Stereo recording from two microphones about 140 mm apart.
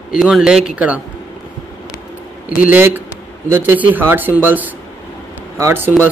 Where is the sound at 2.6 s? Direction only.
15° right (ahead or behind).